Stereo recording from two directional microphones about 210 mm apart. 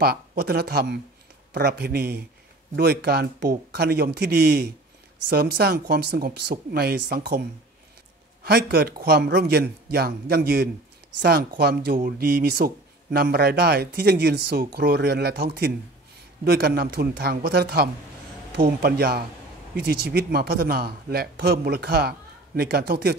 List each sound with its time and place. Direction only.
0.0 s speech: 45° right (ahead or behind)
8.5 s speech: 50° right (ahead or behind)